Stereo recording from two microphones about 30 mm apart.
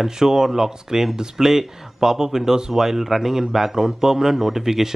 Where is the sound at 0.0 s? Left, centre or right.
Centre.